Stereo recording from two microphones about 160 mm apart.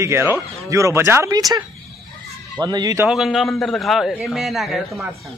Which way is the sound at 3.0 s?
Centre (ahead or behind).